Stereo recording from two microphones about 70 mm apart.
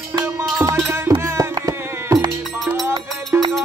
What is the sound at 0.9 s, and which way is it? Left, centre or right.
Music, right.